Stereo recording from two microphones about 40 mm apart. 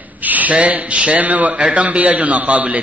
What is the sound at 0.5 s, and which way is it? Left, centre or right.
A man's voice, right.